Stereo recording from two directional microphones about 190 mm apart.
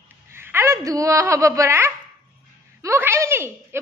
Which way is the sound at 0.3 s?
10° right (ahead or behind).